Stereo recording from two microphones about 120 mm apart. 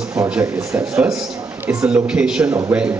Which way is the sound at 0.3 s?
15° right (ahead or behind).